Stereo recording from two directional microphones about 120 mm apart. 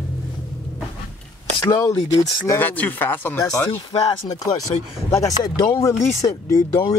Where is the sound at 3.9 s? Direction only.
30° left (ahead or behind).